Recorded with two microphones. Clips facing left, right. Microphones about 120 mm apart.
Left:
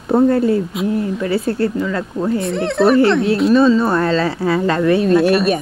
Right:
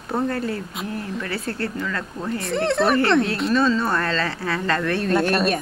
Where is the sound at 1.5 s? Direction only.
15° left (ahead or behind).